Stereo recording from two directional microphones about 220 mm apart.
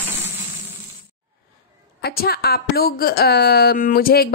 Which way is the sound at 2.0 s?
45° left (ahead or behind).